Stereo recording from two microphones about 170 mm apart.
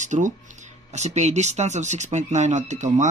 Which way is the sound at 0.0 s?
45° right (ahead or behind).